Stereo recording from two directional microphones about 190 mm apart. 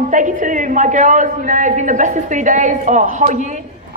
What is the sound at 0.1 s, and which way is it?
A woman's voice, 40° right (ahead or behind).